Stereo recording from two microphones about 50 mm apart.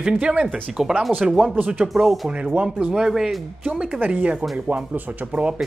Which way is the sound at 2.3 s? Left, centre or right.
Right.